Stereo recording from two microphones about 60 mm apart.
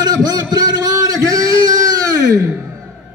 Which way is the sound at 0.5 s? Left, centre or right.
Right.